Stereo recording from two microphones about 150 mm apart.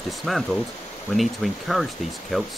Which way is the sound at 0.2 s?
Centre (ahead or behind).